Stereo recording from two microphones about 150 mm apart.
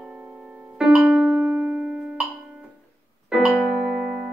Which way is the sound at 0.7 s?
5° right (ahead or behind).